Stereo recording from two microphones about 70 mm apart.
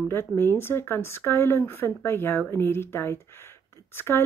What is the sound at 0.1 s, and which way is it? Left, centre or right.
Speech, left.